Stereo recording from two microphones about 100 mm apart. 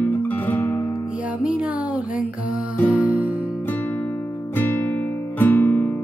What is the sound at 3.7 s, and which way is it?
Music, 20° left (ahead or behind).